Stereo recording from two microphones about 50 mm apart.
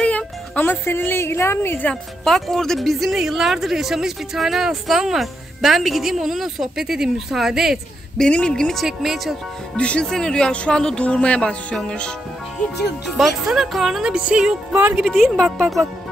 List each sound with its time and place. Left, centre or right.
0.0 s music: left
0.8 s a woman's voice: left
2.2 s a woman's voice: centre
8.3 s a woman's voice: centre
8.8 s speech: centre
9.8 s a woman's voice: left
13.0 s speech: centre
14.0 s music: centre
14.7 s speech: right
15.0 s speech: centre